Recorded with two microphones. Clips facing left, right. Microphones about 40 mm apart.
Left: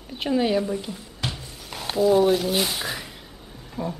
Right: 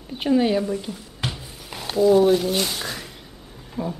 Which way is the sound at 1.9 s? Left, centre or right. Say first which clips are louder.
Right 2 dB; centre.